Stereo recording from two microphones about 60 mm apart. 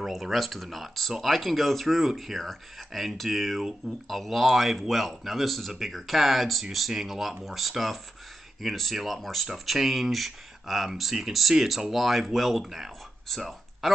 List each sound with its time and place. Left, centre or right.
0.0 s speech: centre